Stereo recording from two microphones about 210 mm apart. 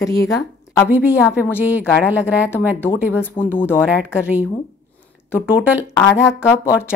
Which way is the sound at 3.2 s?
10° left (ahead or behind).